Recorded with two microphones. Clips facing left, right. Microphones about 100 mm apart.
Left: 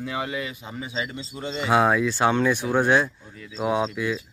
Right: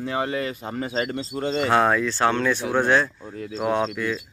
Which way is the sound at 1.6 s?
10° left (ahead or behind).